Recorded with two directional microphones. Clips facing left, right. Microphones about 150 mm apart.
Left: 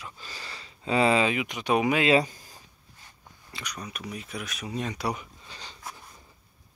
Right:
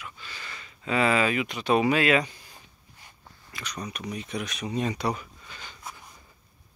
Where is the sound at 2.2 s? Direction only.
40° left (ahead or behind).